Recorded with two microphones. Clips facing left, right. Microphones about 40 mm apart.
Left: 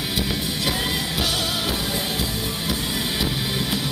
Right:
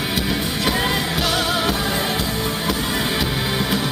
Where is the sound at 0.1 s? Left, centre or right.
Centre.